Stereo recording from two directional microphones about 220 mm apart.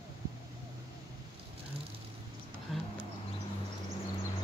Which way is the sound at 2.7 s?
Centre (ahead or behind).